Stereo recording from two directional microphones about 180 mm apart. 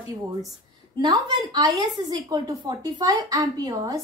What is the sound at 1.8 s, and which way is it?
A woman's voice, 20° right (ahead or behind).